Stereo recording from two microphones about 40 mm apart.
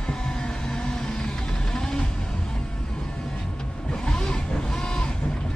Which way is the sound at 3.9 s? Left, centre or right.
Centre.